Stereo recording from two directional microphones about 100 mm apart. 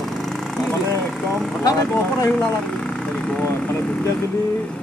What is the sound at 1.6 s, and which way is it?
Speech, 30° left (ahead or behind).